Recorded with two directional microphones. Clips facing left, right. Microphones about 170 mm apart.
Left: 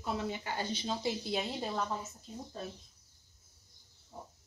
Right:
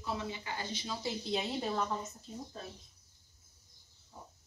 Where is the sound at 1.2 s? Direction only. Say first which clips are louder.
Right 1 dB; 5° left (ahead or behind).